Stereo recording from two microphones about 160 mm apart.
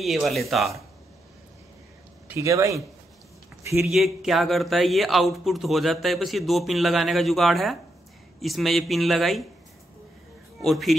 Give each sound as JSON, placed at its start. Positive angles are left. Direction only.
{"t": 0.0, "sound": "speech", "side_deg": 0}
{"t": 2.2, "sound": "speech", "side_deg": -20}
{"t": 3.8, "sound": "speech", "side_deg": 0}
{"t": 10.6, "sound": "speech", "side_deg": 0}